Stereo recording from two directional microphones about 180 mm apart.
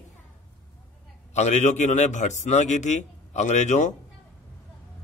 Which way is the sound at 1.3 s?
40° left (ahead or behind).